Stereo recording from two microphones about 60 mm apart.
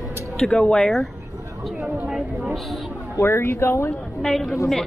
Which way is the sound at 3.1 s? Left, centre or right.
Left.